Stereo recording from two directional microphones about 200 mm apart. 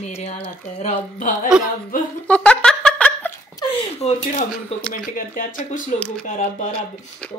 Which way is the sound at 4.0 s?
30° left (ahead or behind).